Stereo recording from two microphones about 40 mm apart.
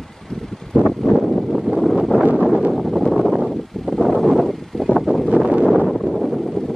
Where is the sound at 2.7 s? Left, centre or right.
Centre.